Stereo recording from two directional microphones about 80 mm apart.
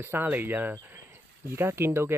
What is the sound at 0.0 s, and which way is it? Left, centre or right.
Speech, right.